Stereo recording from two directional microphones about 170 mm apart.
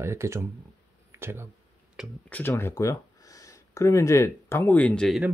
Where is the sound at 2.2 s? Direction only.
10° left (ahead or behind).